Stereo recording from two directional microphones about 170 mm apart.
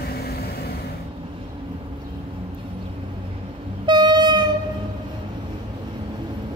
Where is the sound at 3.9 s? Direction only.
25° right (ahead or behind).